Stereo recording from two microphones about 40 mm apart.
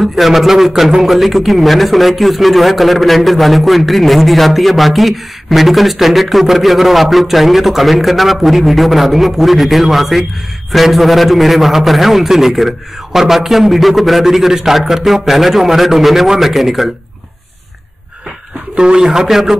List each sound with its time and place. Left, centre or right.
0.2 s a man's voice: centre
18.8 s speech: right
19.0 s speech: centre